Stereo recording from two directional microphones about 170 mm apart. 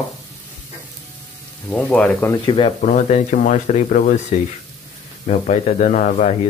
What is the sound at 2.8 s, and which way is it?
Stir, 45° left (ahead or behind).